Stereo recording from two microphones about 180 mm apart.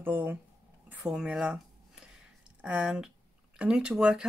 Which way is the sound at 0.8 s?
10° right (ahead or behind).